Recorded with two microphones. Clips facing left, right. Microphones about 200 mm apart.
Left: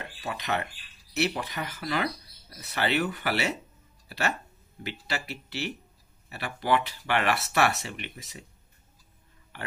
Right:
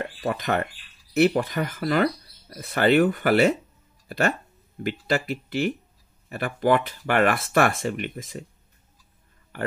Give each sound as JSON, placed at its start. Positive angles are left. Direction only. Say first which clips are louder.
{"t": 0.2, "sound": "speech", "louder": "right 6 dB", "side_deg": -50}
{"t": 4.8, "sound": "speech", "louder": "right 10 dB", "side_deg": -50}